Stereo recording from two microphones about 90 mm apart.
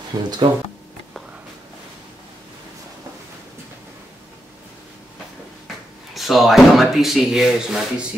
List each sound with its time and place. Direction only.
0.1 s speech: 45° right (ahead or behind)
6.1 s speech: centre (ahead or behind)